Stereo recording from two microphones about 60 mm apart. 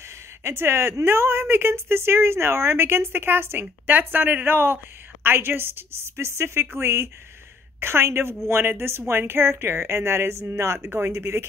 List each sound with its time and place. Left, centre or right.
0.4 s speech: right
10.6 s speech: right
10.9 s speech: right